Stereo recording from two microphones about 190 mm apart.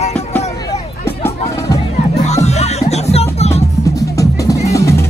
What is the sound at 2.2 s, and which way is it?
Music, 35° left (ahead or behind).